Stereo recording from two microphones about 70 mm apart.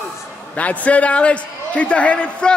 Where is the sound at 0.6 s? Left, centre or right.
Centre.